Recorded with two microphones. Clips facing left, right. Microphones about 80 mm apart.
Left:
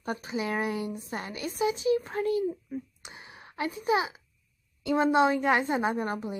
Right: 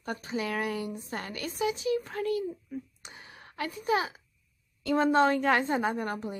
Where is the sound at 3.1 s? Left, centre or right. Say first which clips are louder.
Left 2 dB; left.